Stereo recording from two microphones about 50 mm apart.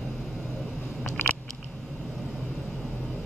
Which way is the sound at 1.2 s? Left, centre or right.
Left.